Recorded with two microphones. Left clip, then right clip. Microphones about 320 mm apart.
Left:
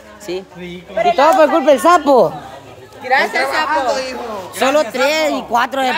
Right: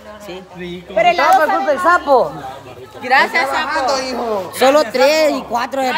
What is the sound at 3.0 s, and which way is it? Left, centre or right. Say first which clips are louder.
Speech: right 1 dB; right.